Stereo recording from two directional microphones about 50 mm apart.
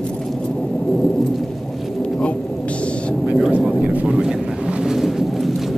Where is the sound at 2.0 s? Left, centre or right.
Left.